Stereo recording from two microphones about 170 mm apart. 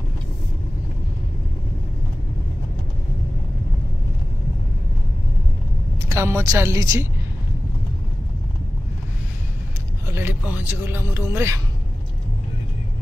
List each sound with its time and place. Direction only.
6.0 s speech: 15° right (ahead or behind)
10.0 s speech: 15° right (ahead or behind)